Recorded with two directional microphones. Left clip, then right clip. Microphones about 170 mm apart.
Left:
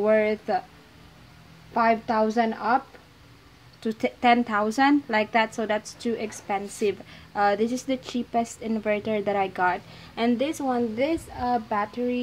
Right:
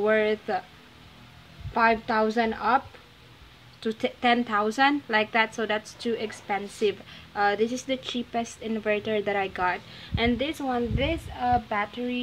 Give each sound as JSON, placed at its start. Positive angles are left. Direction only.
{"t": 0.0, "sound": "a woman's voice", "side_deg": 15}
{"t": 1.7, "sound": "a woman's voice", "side_deg": 10}
{"t": 3.8, "sound": "a woman's voice", "side_deg": 15}